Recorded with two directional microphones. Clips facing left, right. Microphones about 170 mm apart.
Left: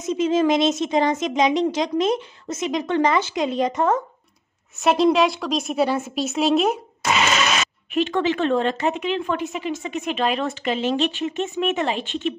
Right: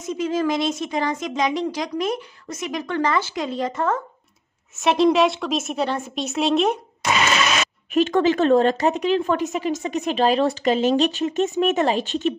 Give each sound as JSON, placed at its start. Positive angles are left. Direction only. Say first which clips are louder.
{"t": 0.0, "sound": "speech", "louder": "left 3 dB", "side_deg": 20}
{"t": 4.7, "sound": "a woman's voice", "louder": "even", "side_deg": 0}
{"t": 7.9, "sound": "speech", "louder": "right 3 dB", "side_deg": -45}